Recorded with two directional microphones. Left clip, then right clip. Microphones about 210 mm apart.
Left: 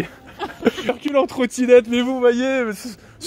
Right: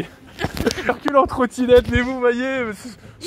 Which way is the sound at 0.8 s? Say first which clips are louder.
Right 5 dB; 10° left (ahead or behind).